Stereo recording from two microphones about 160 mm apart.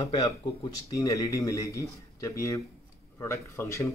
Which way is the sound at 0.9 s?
20° left (ahead or behind).